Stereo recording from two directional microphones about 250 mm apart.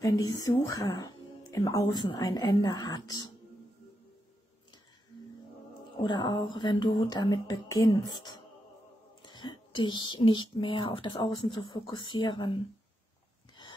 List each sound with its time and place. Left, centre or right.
0.0 s speech: centre
5.9 s speech: centre